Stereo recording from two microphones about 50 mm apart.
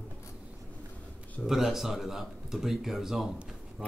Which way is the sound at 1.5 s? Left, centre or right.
Centre.